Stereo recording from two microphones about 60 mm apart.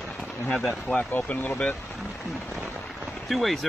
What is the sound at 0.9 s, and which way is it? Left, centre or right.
Speech, left.